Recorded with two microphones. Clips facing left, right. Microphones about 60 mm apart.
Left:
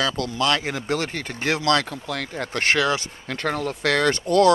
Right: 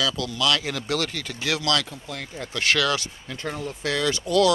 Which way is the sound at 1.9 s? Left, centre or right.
Left.